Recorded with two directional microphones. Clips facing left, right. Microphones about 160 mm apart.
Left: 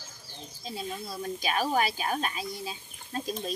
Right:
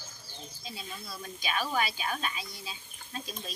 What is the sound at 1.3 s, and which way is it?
A woman's voice, 45° left (ahead or behind).